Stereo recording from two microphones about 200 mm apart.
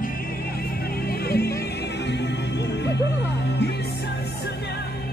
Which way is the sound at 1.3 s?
55° left (ahead or behind).